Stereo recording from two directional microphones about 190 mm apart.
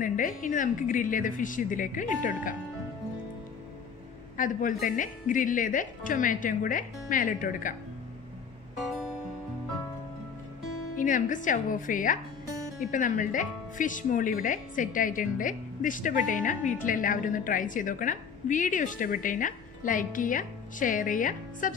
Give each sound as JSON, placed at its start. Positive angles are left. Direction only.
{"t": 0.0, "sound": "a woman's voice", "side_deg": 45}
{"t": 4.4, "sound": "a woman's voice", "side_deg": 45}
{"t": 11.0, "sound": "a woman's voice", "side_deg": 45}